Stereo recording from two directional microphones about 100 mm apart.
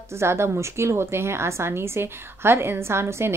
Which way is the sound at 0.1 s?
25° right (ahead or behind).